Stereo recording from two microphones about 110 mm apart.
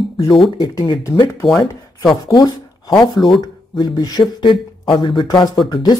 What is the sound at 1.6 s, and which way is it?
Speech, 30° left (ahead or behind).